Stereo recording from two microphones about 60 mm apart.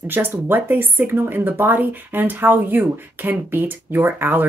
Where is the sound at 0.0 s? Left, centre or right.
Right.